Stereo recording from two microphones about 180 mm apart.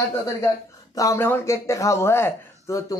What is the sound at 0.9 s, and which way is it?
Speech, 20° left (ahead or behind).